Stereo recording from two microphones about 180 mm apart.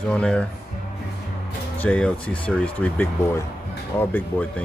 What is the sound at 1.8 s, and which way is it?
Speech, 5° left (ahead or behind).